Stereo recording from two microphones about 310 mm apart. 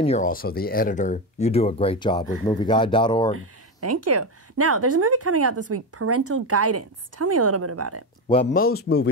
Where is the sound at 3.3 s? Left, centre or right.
Right.